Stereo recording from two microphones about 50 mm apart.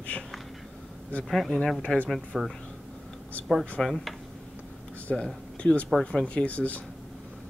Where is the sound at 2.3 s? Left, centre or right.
Centre.